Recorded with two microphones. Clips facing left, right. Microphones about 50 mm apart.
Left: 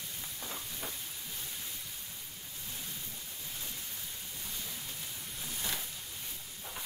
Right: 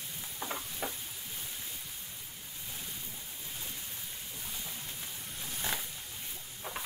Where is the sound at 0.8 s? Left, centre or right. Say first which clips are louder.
Right 7 dB; right.